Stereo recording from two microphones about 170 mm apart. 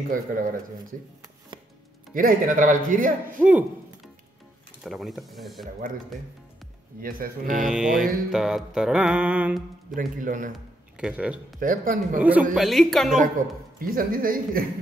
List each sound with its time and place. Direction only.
0.1 s a man's voice: 55° right (ahead or behind)
2.1 s a man's voice: 55° right (ahead or behind)
3.4 s speech: 5° right (ahead or behind)
4.8 s mantra: centre (ahead or behind)
7.0 s speech: 55° right (ahead or behind)
7.6 s mantra: centre (ahead or behind)
9.9 s a man's voice: 55° right (ahead or behind)
10.5 s speech: 5° right (ahead or behind)
11.6 s a man's voice: 55° right (ahead or behind)
12.2 s speech: 10° right (ahead or behind)
12.5 s mantra: centre (ahead or behind)
13.7 s speech: 55° right (ahead or behind)